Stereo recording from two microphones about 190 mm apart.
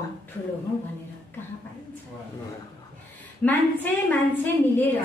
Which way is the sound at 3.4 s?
10° left (ahead or behind).